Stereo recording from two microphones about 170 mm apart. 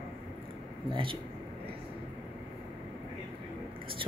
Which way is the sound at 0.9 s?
30° right (ahead or behind).